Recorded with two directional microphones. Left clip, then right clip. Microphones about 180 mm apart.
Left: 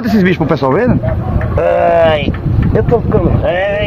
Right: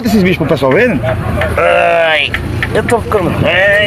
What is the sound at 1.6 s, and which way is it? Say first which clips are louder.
Speech: even; centre (ahead or behind).